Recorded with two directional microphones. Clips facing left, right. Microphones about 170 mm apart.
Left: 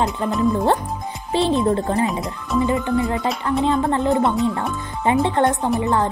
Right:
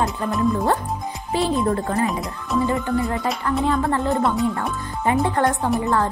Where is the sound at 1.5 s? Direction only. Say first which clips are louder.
Left 2 dB; 25° left (ahead or behind).